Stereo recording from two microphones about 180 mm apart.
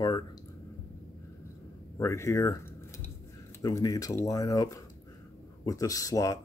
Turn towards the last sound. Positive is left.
turn(degrees=20)  # may be behind; listen again after turning